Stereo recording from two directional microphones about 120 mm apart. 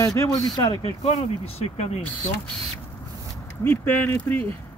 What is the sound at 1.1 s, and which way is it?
Speech, 60° left (ahead or behind).